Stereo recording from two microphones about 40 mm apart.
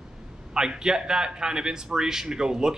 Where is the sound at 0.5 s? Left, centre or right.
Centre.